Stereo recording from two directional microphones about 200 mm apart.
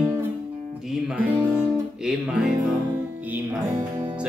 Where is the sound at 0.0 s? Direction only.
10° right (ahead or behind).